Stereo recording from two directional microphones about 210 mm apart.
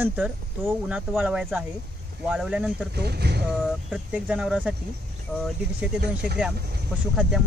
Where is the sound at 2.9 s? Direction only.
50° right (ahead or behind).